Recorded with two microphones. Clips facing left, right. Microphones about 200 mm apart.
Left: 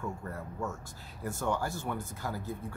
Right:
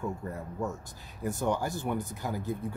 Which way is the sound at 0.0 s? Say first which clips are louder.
Right 3 dB; 15° right (ahead or behind).